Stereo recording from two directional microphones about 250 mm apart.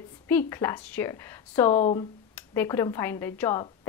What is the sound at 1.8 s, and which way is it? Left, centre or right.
Speech, left.